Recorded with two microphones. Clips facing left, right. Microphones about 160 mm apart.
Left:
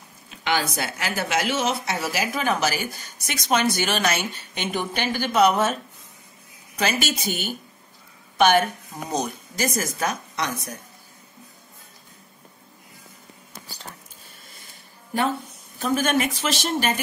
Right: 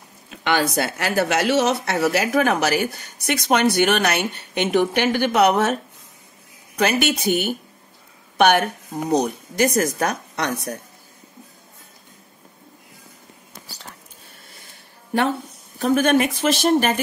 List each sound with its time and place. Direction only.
0.4 s speech: 60° right (ahead or behind)
6.8 s speech: 60° right (ahead or behind)
15.8 s speech: 60° right (ahead or behind)